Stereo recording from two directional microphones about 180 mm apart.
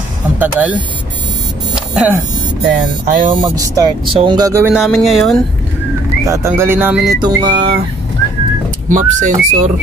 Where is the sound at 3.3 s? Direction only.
25° right (ahead or behind).